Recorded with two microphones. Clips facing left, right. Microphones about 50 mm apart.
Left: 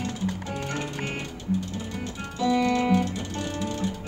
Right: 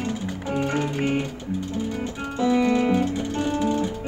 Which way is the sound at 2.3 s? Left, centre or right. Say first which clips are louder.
Right 3 dB; right.